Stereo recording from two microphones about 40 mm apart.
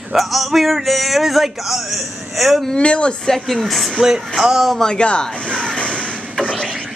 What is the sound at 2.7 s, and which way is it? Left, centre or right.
Speech, left.